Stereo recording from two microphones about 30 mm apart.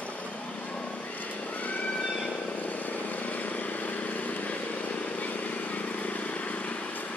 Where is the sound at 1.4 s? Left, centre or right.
Left.